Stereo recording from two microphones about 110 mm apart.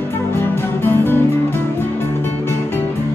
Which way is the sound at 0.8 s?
20° left (ahead or behind).